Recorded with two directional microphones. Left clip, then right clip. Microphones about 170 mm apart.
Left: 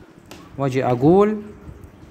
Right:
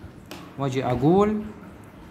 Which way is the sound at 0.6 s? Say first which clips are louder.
Left 5 dB; 30° left (ahead or behind).